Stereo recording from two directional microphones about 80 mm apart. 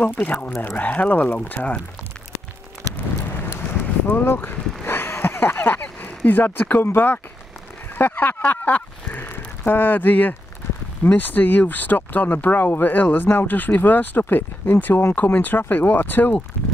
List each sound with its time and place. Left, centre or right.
0.0 s speech: centre
3.2 s horse: left
4.1 s a sound: left
7.9 s speech: left